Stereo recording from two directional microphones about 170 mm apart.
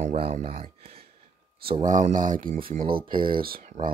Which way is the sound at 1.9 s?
50° right (ahead or behind).